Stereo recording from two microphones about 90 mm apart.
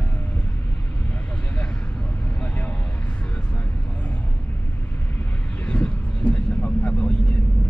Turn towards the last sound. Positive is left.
turn(degrees=15)  # may be behind; listen again after turning